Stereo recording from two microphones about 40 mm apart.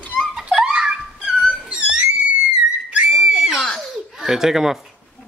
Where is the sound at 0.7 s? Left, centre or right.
Right.